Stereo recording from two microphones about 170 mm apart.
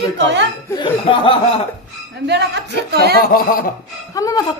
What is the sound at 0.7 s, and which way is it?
Speech, 30° left (ahead or behind).